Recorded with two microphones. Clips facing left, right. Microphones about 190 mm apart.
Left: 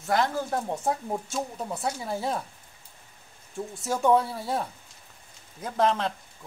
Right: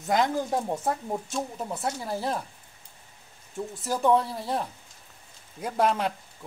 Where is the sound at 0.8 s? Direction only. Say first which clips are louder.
Even; centre (ahead or behind).